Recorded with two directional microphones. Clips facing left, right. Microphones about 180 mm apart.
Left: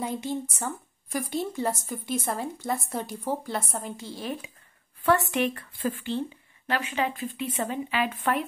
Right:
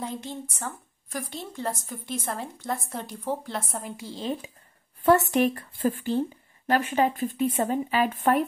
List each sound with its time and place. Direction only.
0.0 s a woman's voice: 10° left (ahead or behind)
4.0 s speech: 20° right (ahead or behind)
5.0 s speech: 40° right (ahead or behind)